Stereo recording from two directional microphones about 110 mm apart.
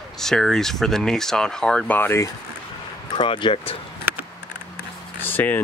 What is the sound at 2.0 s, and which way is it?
Speech, 25° left (ahead or behind).